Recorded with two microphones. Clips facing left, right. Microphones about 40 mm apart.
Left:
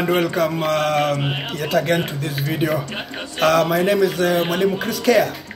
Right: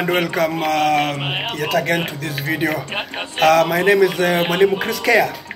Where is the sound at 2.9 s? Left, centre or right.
Right.